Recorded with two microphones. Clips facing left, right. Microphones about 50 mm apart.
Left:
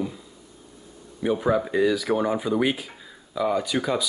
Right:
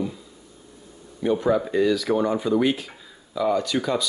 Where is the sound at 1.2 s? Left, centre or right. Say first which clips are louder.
Right 1 dB; centre.